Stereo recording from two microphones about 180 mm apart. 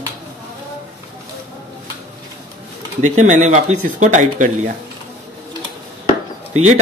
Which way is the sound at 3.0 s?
40° right (ahead or behind).